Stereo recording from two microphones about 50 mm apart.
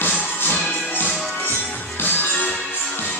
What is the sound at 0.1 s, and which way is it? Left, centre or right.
Music, left.